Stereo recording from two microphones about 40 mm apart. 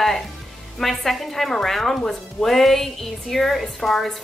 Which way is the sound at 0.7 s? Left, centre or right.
Centre.